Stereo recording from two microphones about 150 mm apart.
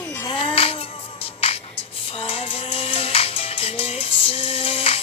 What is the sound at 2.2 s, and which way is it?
Music, 40° left (ahead or behind).